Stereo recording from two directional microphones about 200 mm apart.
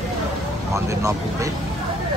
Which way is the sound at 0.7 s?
15° right (ahead or behind).